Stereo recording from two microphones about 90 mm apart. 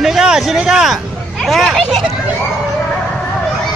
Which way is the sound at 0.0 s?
5° right (ahead or behind).